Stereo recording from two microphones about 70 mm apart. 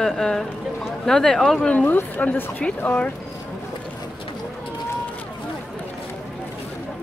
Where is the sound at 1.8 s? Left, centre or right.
Left.